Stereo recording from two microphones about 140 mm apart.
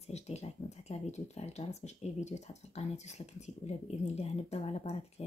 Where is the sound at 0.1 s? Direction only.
50° left (ahead or behind).